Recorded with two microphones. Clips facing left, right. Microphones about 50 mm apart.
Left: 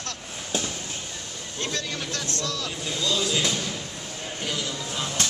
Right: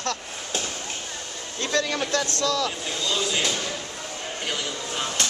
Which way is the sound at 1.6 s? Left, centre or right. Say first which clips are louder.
Right 6 dB; right.